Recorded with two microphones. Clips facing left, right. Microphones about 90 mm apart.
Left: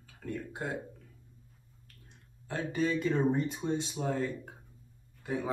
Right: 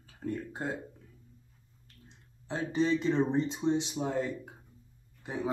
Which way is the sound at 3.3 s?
20° right (ahead or behind).